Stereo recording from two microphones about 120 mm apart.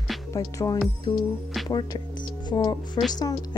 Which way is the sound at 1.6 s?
35° left (ahead or behind).